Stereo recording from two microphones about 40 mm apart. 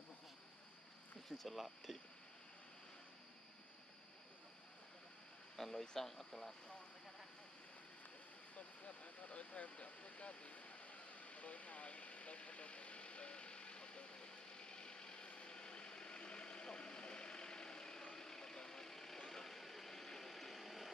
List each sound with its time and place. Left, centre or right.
1.3 s speech: centre
5.6 s speech: centre
8.5 s vehicle: left; by 20.9 s centre